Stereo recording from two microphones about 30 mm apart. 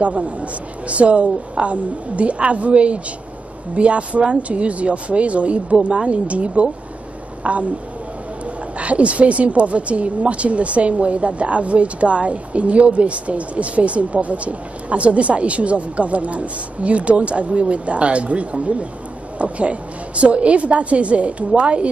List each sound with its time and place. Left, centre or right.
0.0 s speech: right
8.7 s a woman's voice: right